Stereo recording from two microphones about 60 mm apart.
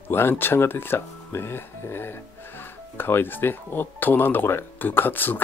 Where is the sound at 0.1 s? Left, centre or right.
Left.